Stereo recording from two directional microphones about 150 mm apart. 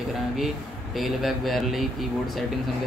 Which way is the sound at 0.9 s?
Centre (ahead or behind).